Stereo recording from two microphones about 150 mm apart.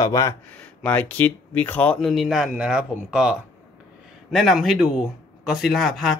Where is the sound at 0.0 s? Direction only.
20° left (ahead or behind).